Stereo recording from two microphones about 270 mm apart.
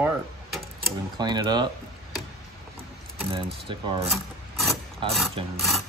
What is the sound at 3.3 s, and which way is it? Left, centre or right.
Speech, centre.